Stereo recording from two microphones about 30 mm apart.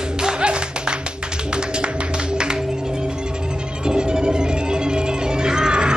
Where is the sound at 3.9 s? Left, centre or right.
Right.